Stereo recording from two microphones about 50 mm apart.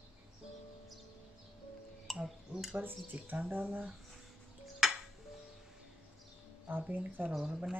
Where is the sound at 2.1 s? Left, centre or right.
Centre.